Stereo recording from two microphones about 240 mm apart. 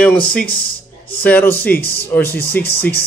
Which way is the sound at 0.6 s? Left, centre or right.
Left.